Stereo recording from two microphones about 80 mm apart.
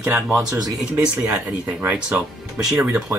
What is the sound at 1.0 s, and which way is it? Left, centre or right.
Speech, centre.